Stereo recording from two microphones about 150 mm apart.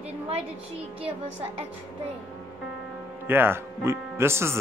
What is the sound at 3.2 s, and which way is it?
Speech, 15° right (ahead or behind).